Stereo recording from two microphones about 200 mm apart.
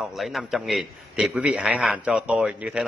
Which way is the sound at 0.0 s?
Centre (ahead or behind).